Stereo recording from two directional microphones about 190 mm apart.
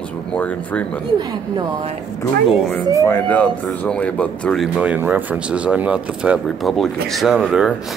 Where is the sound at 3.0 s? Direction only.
10° left (ahead or behind).